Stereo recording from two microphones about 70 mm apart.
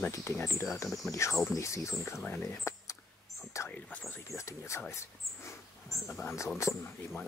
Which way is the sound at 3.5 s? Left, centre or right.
Left.